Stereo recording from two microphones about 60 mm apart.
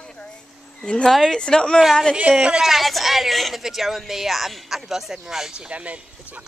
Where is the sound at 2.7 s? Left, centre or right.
Centre.